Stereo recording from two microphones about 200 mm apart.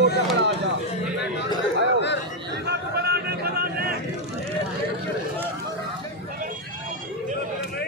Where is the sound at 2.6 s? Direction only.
55° right (ahead or behind).